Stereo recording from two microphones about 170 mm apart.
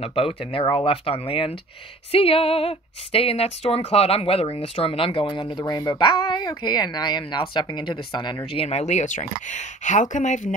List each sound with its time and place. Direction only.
0.0 s speech: 35° left (ahead or behind)
8.5 s speech: 40° left (ahead or behind)